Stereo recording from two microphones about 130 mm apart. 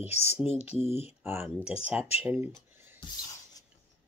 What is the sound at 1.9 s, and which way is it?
Speech, 50° left (ahead or behind).